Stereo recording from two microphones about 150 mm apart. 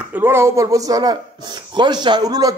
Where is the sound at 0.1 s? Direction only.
15° right (ahead or behind).